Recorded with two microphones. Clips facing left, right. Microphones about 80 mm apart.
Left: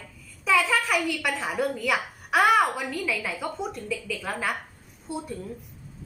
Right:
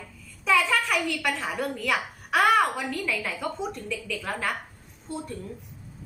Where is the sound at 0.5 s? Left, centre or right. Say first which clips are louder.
Even; centre.